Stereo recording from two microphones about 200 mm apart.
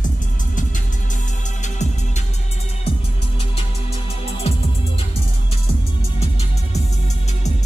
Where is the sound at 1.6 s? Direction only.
35° left (ahead or behind).